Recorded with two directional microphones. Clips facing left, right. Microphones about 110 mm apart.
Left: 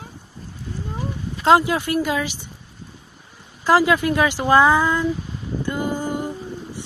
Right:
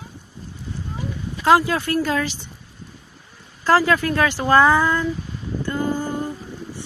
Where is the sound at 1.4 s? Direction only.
20° left (ahead or behind).